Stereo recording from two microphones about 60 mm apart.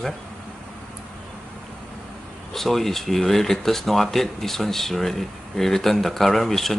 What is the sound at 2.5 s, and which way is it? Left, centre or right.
Speech, centre.